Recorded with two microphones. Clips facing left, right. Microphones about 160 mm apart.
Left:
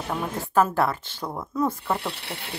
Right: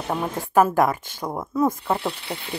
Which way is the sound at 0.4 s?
15° right (ahead or behind).